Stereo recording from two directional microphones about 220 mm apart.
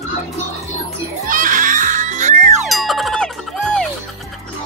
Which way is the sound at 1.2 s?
35° right (ahead or behind).